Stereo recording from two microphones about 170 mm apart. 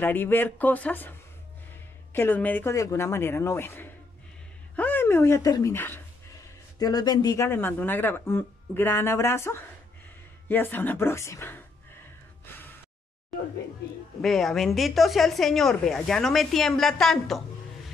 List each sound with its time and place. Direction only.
0.0 s speech: 10° left (ahead or behind)
2.1 s speech: 10° left (ahead or behind)
6.8 s speech: 25° left (ahead or behind)
14.2 s speech: centre (ahead or behind)